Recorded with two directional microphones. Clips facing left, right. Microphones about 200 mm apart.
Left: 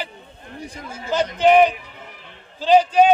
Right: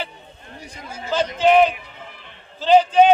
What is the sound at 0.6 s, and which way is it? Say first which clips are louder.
Speech: left 3 dB; 55° left (ahead or behind).